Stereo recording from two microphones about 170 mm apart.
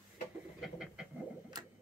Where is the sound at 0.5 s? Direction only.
Centre (ahead or behind).